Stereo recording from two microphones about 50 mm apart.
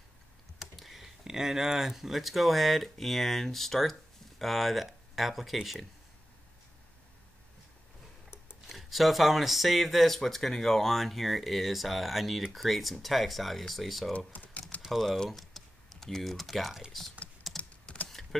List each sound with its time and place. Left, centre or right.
0.6 s speech: centre
8.6 s speech: centre
14.1 s speech: left
14.9 s speech: centre
17.4 s typing: centre
17.9 s typing: centre